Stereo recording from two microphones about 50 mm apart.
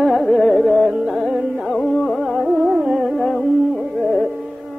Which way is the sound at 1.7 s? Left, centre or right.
Centre.